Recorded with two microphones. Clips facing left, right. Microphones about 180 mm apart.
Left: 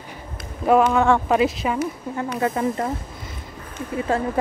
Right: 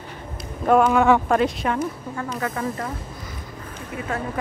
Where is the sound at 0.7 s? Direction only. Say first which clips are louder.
Even; centre (ahead or behind).